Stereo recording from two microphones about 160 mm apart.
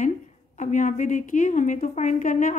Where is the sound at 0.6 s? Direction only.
50° left (ahead or behind).